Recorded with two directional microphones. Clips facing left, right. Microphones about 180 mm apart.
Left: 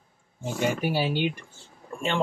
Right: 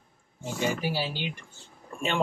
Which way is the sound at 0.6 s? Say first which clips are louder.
Left 3 dB; 55° left (ahead or behind).